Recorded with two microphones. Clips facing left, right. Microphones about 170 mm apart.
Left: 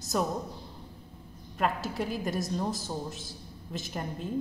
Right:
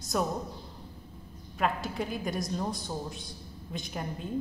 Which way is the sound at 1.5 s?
Centre (ahead or behind).